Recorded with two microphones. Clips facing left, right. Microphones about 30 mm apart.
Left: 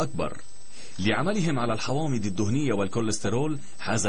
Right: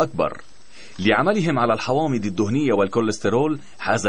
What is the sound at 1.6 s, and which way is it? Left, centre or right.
Speech, right.